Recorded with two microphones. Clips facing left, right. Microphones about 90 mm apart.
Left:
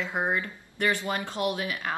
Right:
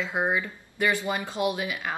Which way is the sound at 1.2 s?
5° right (ahead or behind).